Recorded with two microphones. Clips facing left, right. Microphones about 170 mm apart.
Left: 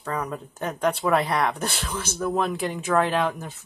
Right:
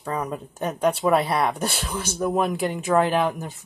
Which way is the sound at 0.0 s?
10° right (ahead or behind).